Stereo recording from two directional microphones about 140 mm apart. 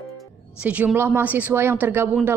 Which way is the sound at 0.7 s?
10° right (ahead or behind).